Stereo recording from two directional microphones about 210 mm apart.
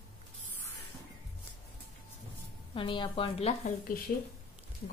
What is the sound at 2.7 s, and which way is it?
Speech, 25° left (ahead or behind).